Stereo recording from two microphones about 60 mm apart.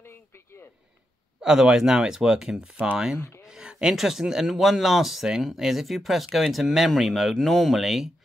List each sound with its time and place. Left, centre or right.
0.0 s a sound: left
1.4 s speech: centre
3.2 s speech: left
3.4 s speech: centre